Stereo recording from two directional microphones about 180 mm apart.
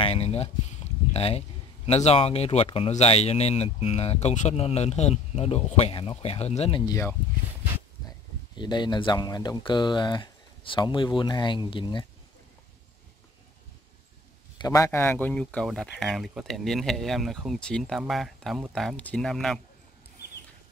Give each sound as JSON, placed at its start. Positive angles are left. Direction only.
{"t": 0.0, "sound": "speech", "side_deg": 35}
{"t": 6.9, "sound": "speech", "side_deg": 15}
{"t": 8.5, "sound": "speech", "side_deg": 25}
{"t": 14.6, "sound": "speech", "side_deg": 20}